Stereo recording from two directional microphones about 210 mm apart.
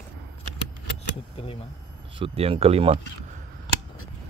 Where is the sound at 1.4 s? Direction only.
30° left (ahead or behind).